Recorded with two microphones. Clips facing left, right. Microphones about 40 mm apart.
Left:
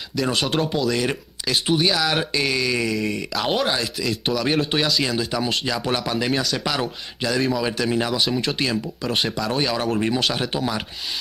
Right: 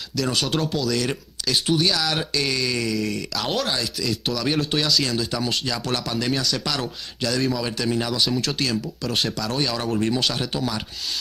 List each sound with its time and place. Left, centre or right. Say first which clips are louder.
0.1 s speech: left 2 dB; centre